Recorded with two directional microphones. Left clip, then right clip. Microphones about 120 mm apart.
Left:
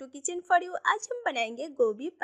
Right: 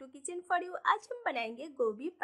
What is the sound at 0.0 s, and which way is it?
A woman's voice, 50° left (ahead or behind).